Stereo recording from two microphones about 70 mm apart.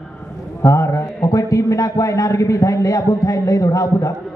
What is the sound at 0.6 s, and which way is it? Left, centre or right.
A man's voice, left.